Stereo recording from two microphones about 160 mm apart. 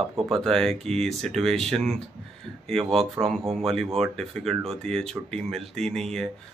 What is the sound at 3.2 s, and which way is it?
Speech, 5° left (ahead or behind).